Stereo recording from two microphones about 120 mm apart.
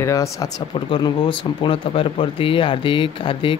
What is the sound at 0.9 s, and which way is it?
Speech, 40° left (ahead or behind).